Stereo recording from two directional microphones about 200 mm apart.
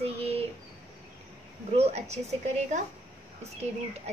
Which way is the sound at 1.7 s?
30° right (ahead or behind).